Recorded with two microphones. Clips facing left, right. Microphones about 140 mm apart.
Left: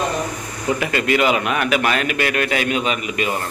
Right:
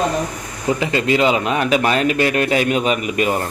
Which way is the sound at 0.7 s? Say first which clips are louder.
Right 1 dB; 25° right (ahead or behind).